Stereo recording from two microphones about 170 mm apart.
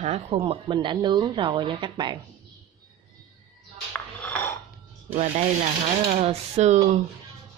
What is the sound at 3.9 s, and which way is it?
Music, 10° left (ahead or behind).